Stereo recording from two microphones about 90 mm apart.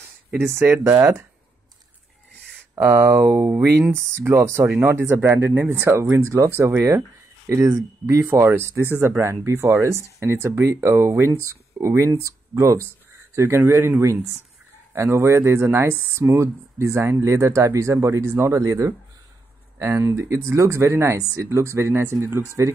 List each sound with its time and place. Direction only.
0.6 s speech: 25° right (ahead or behind)
2.8 s speech: 25° right (ahead or behind)
3.4 s speech: 15° right (ahead or behind)
3.9 s speech: 30° right (ahead or behind)